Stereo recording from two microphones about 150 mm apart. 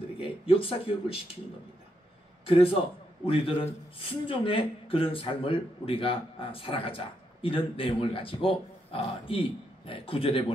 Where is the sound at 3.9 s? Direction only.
35° left (ahead or behind).